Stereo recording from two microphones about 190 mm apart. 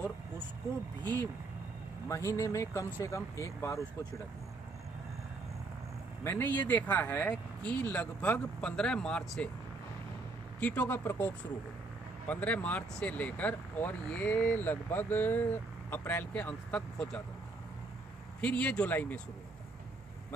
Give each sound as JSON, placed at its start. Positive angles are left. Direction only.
{"t": 2.0, "sound": "speech", "side_deg": 15}
{"t": 6.2, "sound": "speech", "side_deg": 10}
{"t": 10.6, "sound": "speech", "side_deg": 10}
{"t": 18.4, "sound": "speech", "side_deg": 5}